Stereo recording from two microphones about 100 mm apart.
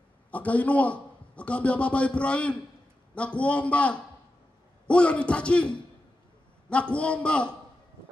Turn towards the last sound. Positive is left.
turn(degrees=10)  # may be behind; listen again after turning